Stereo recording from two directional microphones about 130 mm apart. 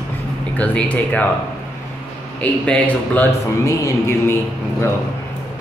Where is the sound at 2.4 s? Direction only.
10° left (ahead or behind).